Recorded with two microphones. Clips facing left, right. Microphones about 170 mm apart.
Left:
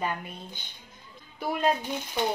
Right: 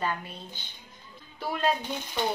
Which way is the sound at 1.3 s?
15° left (ahead or behind).